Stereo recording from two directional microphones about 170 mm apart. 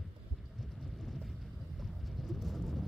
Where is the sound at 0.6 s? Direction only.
Centre (ahead or behind).